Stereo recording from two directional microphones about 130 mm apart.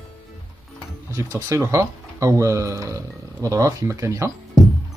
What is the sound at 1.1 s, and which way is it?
Speech, 20° right (ahead or behind).